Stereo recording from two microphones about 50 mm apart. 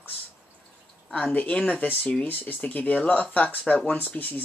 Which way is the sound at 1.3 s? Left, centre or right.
Left.